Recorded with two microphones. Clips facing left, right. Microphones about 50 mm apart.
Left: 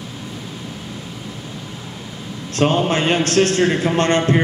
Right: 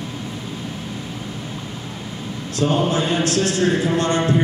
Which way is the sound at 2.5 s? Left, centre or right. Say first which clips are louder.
Left 2 dB; left.